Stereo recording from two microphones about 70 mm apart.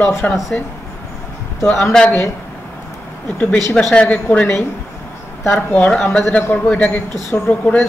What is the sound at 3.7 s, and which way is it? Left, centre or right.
Speech, centre.